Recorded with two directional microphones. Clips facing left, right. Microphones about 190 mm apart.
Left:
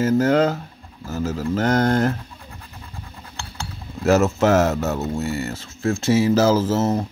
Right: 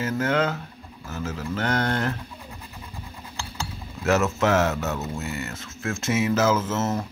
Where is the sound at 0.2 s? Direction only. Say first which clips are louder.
Left 6 dB; 40° left (ahead or behind).